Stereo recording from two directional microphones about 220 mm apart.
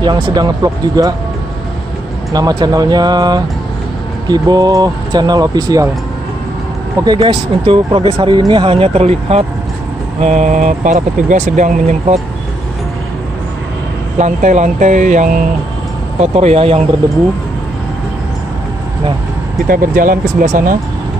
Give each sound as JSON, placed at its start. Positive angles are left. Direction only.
{"t": 0.0, "sound": "speech", "side_deg": -20}
{"t": 2.3, "sound": "speech", "side_deg": -15}
{"t": 7.1, "sound": "speech", "side_deg": -20}
{"t": 14.1, "sound": "speech", "side_deg": -35}
{"t": 19.7, "sound": "speech", "side_deg": -40}